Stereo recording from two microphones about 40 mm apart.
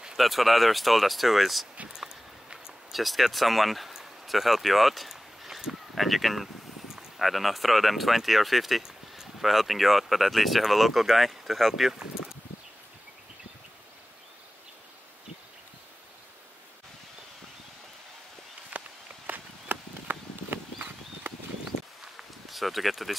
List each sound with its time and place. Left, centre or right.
0.2 s speech: centre
1.9 s a sound: centre
2.9 s speech: centre
3.9 s a sound: centre
7.0 s speech: centre
18.7 s walk: right
19.2 s horse: right
22.5 s speech: centre